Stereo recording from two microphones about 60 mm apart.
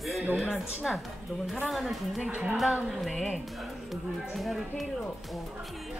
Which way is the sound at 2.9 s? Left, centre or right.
Centre.